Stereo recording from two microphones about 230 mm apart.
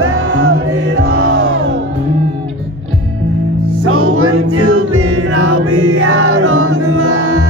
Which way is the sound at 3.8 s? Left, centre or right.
Right.